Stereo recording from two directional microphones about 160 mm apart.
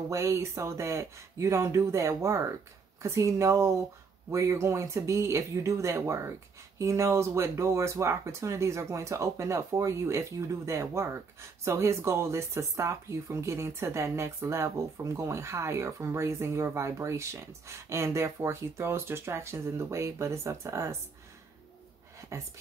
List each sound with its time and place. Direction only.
0.1 s speech: 20° right (ahead or behind)
22.3 s speech: 20° right (ahead or behind)